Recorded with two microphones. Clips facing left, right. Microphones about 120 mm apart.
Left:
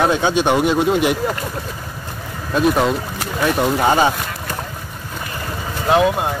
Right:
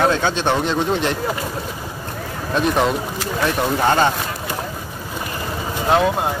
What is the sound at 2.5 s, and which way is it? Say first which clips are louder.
Speech: left 2 dB; 5° left (ahead or behind).